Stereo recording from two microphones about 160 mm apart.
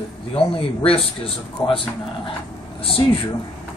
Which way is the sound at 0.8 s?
35° left (ahead or behind).